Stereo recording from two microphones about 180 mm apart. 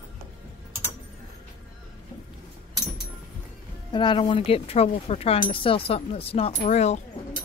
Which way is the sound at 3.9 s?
25° left (ahead or behind).